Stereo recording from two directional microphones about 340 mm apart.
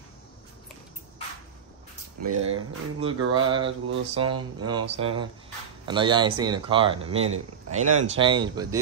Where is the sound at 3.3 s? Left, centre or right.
Centre.